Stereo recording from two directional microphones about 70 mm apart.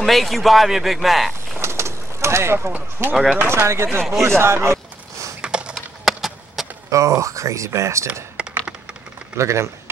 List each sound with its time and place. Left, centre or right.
0.0 s speech: centre
1.6 s bird: right
2.7 s speech: right
3.3 s speech: right
4.0 s speech: centre
5.4 s a sound: centre
5.8 s a sound: centre
6.9 s speech: right
8.4 s computer keyboard: centre
9.4 s speech: right